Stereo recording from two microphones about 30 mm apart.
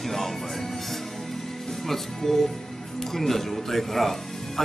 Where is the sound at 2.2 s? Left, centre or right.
Centre.